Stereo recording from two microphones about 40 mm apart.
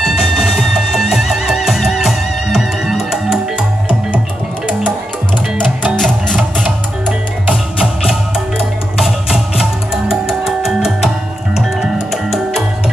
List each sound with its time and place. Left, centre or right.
0.0 s music: centre
6.3 s music: right
7.8 s music: centre
12.1 s music: centre